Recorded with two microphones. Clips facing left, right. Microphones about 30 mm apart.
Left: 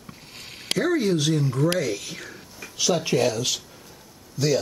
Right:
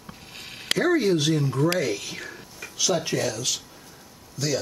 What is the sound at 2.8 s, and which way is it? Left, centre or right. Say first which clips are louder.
Speech: left 3 dB; centre.